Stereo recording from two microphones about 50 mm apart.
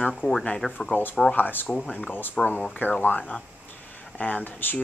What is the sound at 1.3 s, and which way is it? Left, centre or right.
Speech, left.